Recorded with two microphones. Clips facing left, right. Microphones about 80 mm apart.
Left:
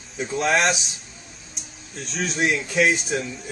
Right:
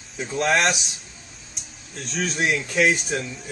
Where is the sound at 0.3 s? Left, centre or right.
Centre.